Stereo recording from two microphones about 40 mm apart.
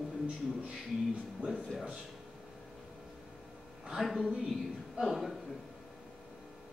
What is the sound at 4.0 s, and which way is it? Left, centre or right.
A woman's voice, centre.